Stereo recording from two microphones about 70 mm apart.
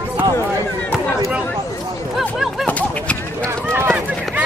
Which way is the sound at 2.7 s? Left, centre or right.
Centre.